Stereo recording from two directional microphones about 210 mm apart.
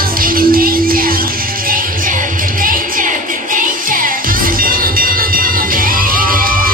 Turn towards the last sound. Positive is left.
turn(degrees=-40)  # may be behind; listen again after turning